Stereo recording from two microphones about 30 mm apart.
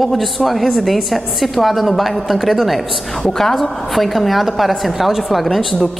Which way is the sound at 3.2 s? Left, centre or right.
Centre.